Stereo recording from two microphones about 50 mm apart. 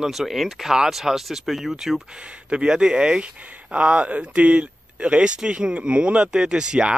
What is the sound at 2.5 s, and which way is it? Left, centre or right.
Speech, centre.